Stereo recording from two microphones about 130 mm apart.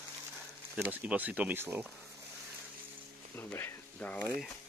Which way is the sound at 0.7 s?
10° right (ahead or behind).